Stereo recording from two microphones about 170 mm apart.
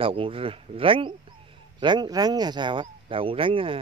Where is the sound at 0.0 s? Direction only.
30° right (ahead or behind).